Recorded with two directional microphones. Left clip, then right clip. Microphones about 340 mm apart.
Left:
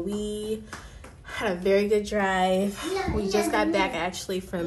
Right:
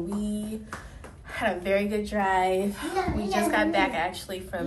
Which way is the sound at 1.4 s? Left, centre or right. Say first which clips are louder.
Left 2 dB; left.